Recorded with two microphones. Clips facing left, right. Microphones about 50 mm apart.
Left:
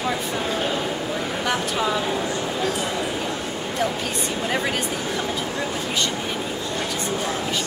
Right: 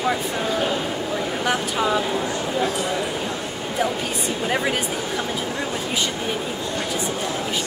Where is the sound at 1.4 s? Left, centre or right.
Centre.